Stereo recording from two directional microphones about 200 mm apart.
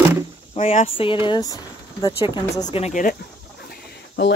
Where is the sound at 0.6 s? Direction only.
35° left (ahead or behind).